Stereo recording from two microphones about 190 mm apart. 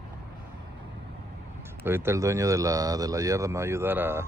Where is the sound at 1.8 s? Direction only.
10° right (ahead or behind).